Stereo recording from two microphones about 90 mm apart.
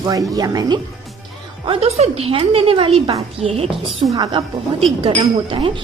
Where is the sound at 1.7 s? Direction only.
90° right.